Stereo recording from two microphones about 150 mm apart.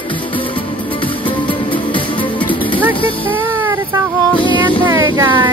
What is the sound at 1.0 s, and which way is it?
Music, 35° left (ahead or behind).